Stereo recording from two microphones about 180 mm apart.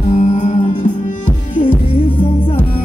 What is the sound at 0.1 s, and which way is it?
Music, 40° left (ahead or behind).